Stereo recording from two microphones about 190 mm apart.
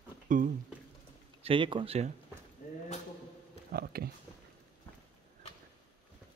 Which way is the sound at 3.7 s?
55° right (ahead or behind).